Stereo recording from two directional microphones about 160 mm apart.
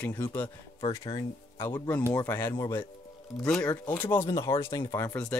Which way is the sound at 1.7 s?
10° left (ahead or behind).